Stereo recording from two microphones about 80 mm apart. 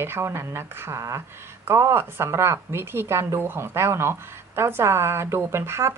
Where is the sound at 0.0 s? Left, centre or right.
Right.